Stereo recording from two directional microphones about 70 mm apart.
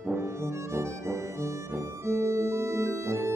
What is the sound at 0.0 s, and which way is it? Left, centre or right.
Music, right.